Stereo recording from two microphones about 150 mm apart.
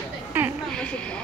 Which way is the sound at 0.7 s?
5° left (ahead or behind).